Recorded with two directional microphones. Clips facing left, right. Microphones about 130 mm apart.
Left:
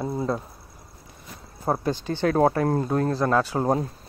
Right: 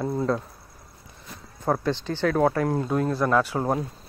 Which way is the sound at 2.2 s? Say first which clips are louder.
Left 1 dB; 30° left (ahead or behind).